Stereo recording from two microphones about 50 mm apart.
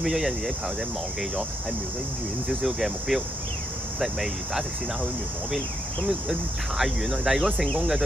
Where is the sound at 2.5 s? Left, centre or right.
Centre.